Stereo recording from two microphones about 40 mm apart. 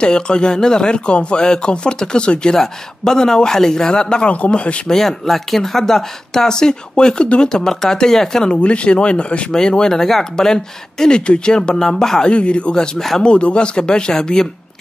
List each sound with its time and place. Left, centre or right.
0.0 s speech: left
2.5 s speech: centre
4.8 s speech: centre
8.5 s speech: left
9.5 s speech: centre
12.3 s speech: left